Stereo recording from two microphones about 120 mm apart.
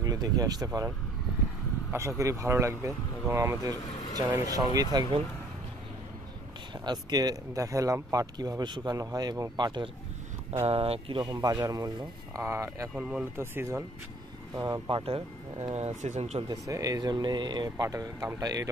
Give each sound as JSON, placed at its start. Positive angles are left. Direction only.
{"t": 0.0, "sound": "speech", "side_deg": -30}
{"t": 1.9, "sound": "speech", "side_deg": -25}
{"t": 6.7, "sound": "speech", "side_deg": -35}
{"t": 10.7, "sound": "speech", "side_deg": -50}
{"t": 12.9, "sound": "speech", "side_deg": -10}
{"t": 13.4, "sound": "speech", "side_deg": -20}
{"t": 14.5, "sound": "speech", "side_deg": -30}
{"t": 14.9, "sound": "speech", "side_deg": -50}
{"t": 16.4, "sound": "speech", "side_deg": -30}
{"t": 17.8, "sound": "speech", "side_deg": -30}